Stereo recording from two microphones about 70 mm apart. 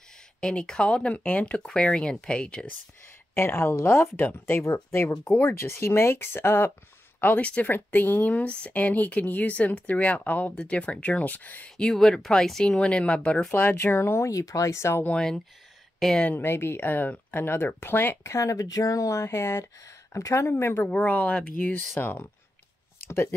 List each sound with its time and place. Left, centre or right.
0.4 s speech: centre
3.3 s speech: left
5.2 s speech: left
11.7 s speech: centre
13.5 s speech: left
15.1 s speech: centre
16.3 s speech: left
18.2 s speech: left
20.9 s speech: centre
21.9 s speech: left
23.0 s a sound: left